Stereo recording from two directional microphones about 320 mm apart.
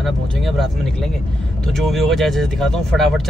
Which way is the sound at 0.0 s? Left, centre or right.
Centre.